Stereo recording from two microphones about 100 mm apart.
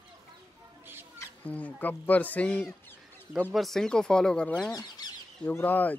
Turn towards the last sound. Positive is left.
turn(degrees=15)  # may be behind; listen again after turning